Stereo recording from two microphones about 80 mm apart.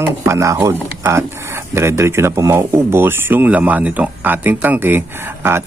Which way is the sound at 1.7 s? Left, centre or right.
Right.